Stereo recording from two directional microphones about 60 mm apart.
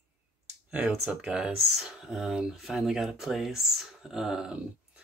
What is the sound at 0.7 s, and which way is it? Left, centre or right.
Speech, centre.